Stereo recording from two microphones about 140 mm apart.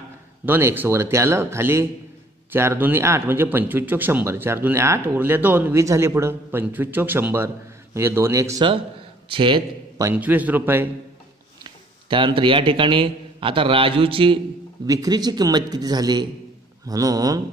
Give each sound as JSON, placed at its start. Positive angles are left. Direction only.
{"t": 0.5, "sound": "speech", "side_deg": -15}
{"t": 9.3, "sound": "a man's voice", "side_deg": -35}
{"t": 10.1, "sound": "speech", "side_deg": -10}
{"t": 11.6, "sound": "a sound", "side_deg": -35}
{"t": 12.4, "sound": "a man's voice", "side_deg": -40}
{"t": 14.9, "sound": "a man's voice", "side_deg": -25}